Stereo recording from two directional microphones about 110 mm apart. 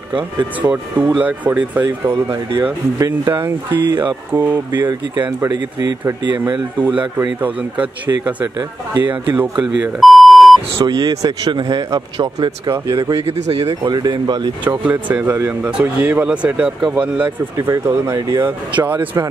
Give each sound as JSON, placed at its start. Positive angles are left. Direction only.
{"t": 0.1, "sound": "speech", "side_deg": -15}
{"t": 3.0, "sound": "speech", "side_deg": -25}
{"t": 5.5, "sound": "speech", "side_deg": -35}
{"t": 6.8, "sound": "speech", "side_deg": -10}
{"t": 8.5, "sound": "speech", "side_deg": -40}
{"t": 9.4, "sound": "speech", "side_deg": -10}
{"t": 9.9, "sound": "beep", "side_deg": 0}
{"t": 10.9, "sound": "speech", "side_deg": -40}
{"t": 13.3, "sound": "speech", "side_deg": -65}
{"t": 13.8, "sound": "speech", "side_deg": -40}
{"t": 14.6, "sound": "speech", "side_deg": -15}
{"t": 17.6, "sound": "speech", "side_deg": -30}
{"t": 18.1, "sound": "speech", "side_deg": -35}
{"t": 18.8, "sound": "speech", "side_deg": -15}